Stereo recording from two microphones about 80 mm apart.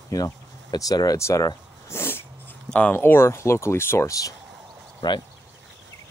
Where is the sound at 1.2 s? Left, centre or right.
Left.